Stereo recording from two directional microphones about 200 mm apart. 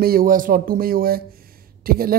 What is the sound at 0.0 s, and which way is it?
Speech, 45° right (ahead or behind).